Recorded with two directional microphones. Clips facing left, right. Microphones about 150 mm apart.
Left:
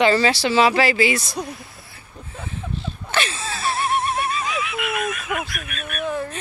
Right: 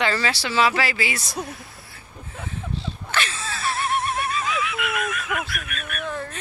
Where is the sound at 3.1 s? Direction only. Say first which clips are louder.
Left 3 dB; 15° left (ahead or behind).